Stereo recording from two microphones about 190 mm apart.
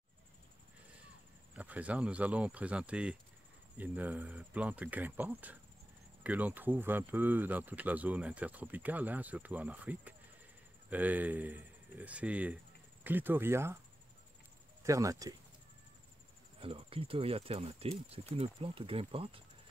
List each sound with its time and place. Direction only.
1.5 s cricket: 5° right (ahead or behind)
14.8 s speech: 15° right (ahead or behind)
16.5 s cricket: 30° right (ahead or behind)